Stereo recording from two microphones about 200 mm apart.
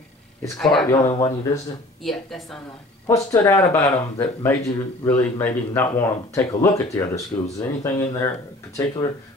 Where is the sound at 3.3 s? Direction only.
15° left (ahead or behind).